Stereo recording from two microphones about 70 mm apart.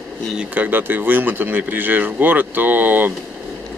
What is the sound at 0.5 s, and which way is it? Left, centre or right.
Speech, right.